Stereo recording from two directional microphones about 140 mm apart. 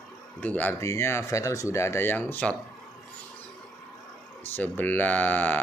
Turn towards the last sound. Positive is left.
turn(degrees=15)  # may be behind; listen again after turning